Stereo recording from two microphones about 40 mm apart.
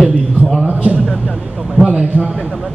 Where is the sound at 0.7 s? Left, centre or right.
Right.